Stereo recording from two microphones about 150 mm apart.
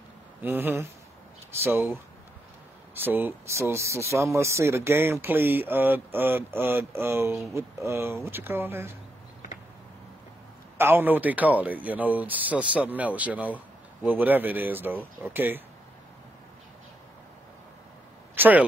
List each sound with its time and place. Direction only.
0.4 s speech: 15° right (ahead or behind)
2.9 s speech: 15° right (ahead or behind)
10.8 s speech: 15° right (ahead or behind)
18.3 s a sound: 15° right (ahead or behind)